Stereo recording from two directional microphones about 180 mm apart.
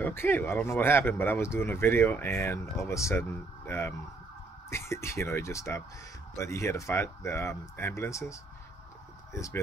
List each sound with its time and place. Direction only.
0.0 s speech: 10° left (ahead or behind)